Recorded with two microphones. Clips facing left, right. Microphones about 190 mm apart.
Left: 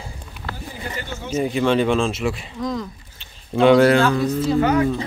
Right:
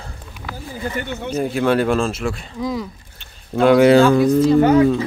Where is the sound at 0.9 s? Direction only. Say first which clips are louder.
Right 2 dB; 60° right (ahead or behind).